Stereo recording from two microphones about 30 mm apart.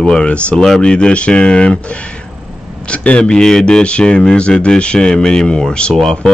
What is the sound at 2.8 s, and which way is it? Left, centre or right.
Speech, left.